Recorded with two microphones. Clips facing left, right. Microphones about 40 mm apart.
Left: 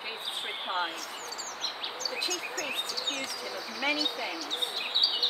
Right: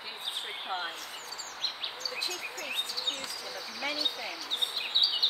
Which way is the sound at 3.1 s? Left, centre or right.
Left.